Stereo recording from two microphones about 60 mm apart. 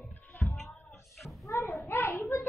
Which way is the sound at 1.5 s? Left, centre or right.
Left.